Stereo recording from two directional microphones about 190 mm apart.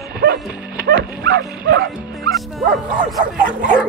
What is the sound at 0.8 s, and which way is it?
Dog, 55° right (ahead or behind).